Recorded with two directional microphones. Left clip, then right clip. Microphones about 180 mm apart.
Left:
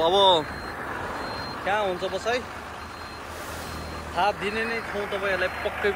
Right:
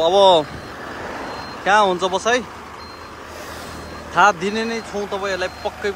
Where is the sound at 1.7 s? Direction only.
45° right (ahead or behind).